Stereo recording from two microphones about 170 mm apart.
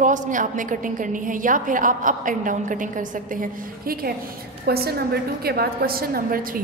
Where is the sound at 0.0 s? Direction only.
50° right (ahead or behind).